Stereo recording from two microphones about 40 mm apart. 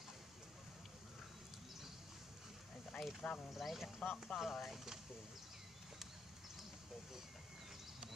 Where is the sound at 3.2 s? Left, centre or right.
Left.